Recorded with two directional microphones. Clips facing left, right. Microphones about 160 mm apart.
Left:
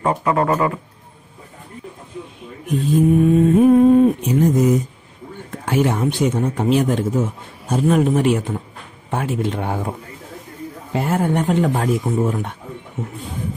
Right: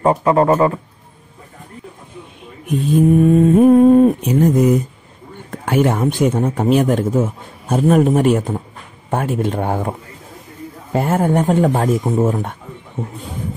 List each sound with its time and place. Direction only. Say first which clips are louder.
0.0 s speech: right 5 dB; 30° right (ahead or behind)
3.2 s speech: right 3 dB; 50° right (ahead or behind)
10.9 s speech: right 3 dB; 45° right (ahead or behind)